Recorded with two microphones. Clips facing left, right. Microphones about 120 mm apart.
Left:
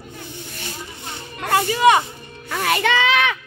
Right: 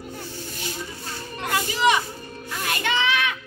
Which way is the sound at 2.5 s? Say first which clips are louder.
Left 7 dB; 80° left.